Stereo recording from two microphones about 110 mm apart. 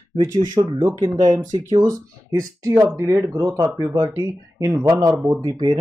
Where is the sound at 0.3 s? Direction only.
35° right (ahead or behind).